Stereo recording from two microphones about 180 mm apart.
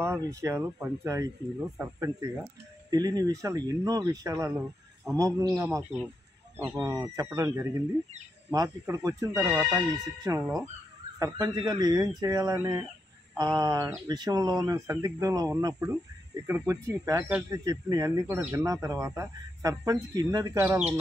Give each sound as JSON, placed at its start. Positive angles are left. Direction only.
{"t": 0.0, "sound": "speech", "side_deg": -15}
{"t": 9.4, "sound": "speech", "side_deg": 0}
{"t": 9.8, "sound": "speech", "side_deg": -20}